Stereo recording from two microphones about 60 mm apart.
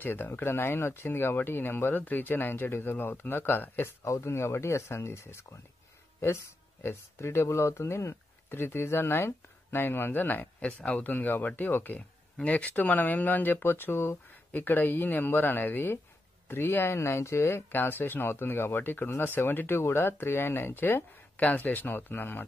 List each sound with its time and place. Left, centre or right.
0.0 s speech: left
4.2 s speech: left
6.8 s speech: left
8.5 s speech: left